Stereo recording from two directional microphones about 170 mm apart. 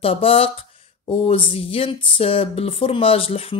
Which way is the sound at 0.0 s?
35° left (ahead or behind).